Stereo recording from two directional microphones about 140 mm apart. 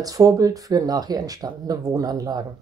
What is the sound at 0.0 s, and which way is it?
Speech, 25° right (ahead or behind).